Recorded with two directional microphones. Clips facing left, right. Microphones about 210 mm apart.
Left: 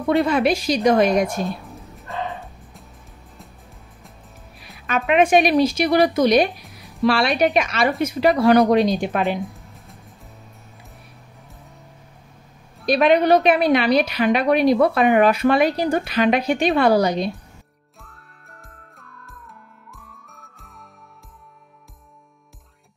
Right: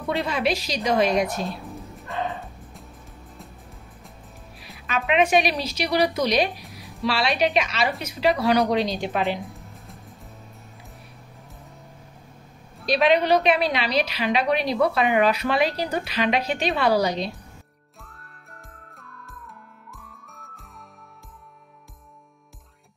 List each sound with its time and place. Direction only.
0.2 s a woman's voice: 50° left (ahead or behind)
2.0 s music: centre (ahead or behind)
4.8 s a woman's voice: 50° left (ahead or behind)
9.4 s music: centre (ahead or behind)
12.8 s a woman's voice: 50° left (ahead or behind)
18.0 s music: centre (ahead or behind)